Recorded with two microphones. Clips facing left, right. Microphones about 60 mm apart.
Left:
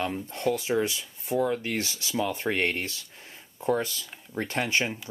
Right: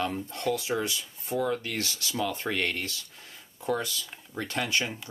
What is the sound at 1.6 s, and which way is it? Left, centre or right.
Speech, left.